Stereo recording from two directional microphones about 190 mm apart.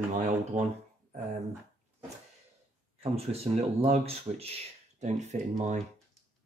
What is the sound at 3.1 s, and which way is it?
Speech, 30° right (ahead or behind).